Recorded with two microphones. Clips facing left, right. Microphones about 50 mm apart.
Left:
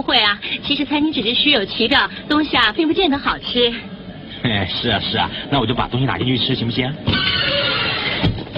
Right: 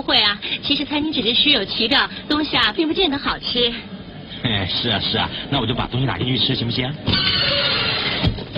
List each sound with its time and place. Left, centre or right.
0.0 s a woman's voice: centre
3.6 s a woman's voice: centre
4.4 s a man's voice: centre
6.7 s music: centre